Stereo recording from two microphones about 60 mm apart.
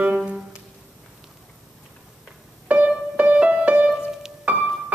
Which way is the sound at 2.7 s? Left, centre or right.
Right.